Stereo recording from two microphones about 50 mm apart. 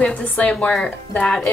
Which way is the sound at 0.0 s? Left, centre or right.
Left.